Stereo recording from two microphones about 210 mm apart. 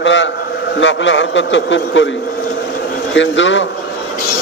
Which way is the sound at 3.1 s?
60° left (ahead or behind).